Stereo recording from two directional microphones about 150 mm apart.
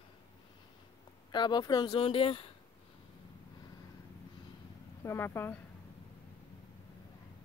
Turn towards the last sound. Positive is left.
turn(degrees=15)  # may be behind; listen again after turning